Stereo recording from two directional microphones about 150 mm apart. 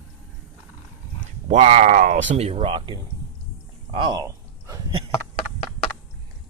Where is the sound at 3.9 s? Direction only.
30° right (ahead or behind).